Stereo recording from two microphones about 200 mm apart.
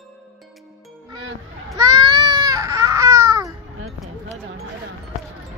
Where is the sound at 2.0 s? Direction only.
20° right (ahead or behind).